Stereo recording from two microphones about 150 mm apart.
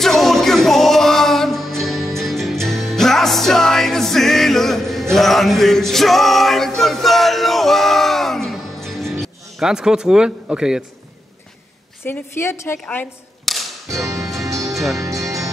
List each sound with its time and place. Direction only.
0.0 s music: centre (ahead or behind)
5.1 s male singing: centre (ahead or behind)
9.2 s speech: 5° right (ahead or behind)
12.0 s a woman's voice: 15° left (ahead or behind)
12.8 s music: 5° left (ahead or behind)
15.0 s speech: 20° right (ahead or behind)